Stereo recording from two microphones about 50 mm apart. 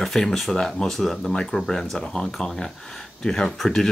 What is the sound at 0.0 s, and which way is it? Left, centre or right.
Speech, centre.